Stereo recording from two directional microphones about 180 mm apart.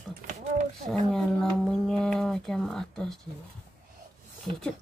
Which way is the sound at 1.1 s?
5° left (ahead or behind).